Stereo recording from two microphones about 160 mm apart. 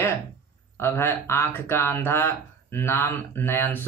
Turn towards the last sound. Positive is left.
turn(degrees=15)  # may be behind; listen again after turning